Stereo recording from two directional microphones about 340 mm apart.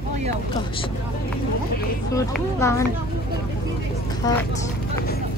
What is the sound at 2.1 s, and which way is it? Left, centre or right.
Speech, centre.